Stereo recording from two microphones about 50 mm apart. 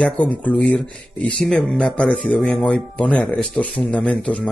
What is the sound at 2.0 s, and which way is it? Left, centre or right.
Speech, left.